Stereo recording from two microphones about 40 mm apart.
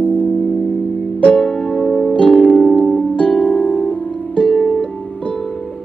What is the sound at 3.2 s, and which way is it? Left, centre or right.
Harp, left.